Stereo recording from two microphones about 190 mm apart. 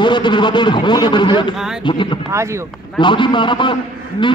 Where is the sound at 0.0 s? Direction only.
25° left (ahead or behind).